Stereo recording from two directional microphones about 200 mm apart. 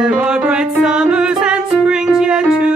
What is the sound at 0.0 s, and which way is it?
Music, 5° right (ahead or behind).